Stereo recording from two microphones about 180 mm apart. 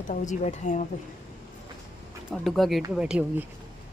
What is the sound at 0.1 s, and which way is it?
Speech, 45° left (ahead or behind).